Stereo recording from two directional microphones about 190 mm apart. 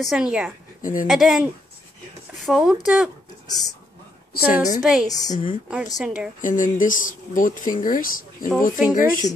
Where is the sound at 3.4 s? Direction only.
20° left (ahead or behind).